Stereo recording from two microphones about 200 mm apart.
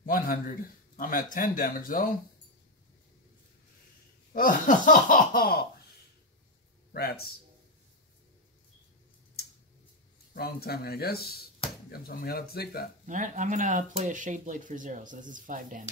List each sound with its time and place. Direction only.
0.0 s a man's voice: 45° left (ahead or behind)
4.3 s speech: 45° left (ahead or behind)
6.9 s speech: 50° left (ahead or behind)
10.3 s speech: 50° left (ahead or behind)
13.0 s speech: 40° right (ahead or behind)